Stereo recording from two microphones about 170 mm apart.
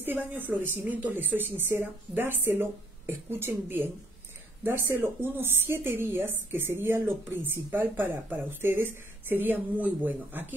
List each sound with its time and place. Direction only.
0.0 s speech: 10° right (ahead or behind)